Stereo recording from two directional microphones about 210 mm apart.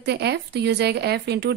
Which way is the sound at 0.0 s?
50° right (ahead or behind).